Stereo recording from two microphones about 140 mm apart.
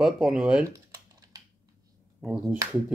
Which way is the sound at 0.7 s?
25° right (ahead or behind).